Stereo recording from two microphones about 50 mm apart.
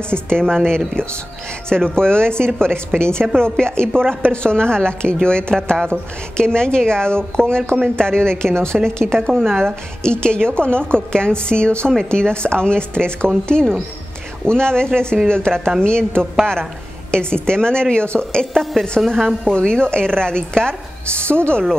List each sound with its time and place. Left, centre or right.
0.1 s a woman's voice: centre
2.7 s a woman's voice: right
3.3 s a woman's voice: centre
8.7 s a woman's voice: centre
9.1 s a woman's voice: centre
10.0 s a woman's voice: centre
18.7 s a woman's voice: centre
19.4 s a woman's voice: centre